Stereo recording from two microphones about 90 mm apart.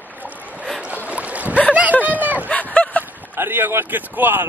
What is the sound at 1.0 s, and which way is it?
Boat, 15° right (ahead or behind).